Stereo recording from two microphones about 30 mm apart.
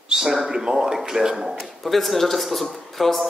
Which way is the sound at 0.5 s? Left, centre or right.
Right.